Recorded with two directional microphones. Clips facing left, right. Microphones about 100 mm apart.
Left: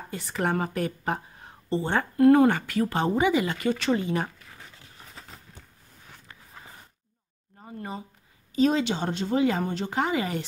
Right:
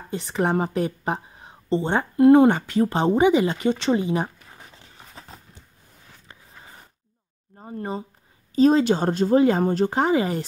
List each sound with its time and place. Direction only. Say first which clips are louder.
0.1 s a woman's voice: right 5 dB; 25° right (ahead or behind)
7.5 s a sound: right 6 dB; 30° right (ahead or behind)
8.5 s speech: right 6 dB; 40° right (ahead or behind)